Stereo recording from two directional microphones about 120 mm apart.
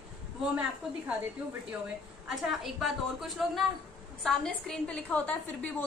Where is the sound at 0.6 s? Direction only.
10° right (ahead or behind).